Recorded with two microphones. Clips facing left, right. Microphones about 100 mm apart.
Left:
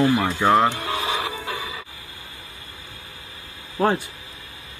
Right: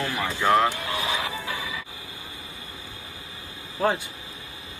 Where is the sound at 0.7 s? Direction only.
40° left (ahead or behind).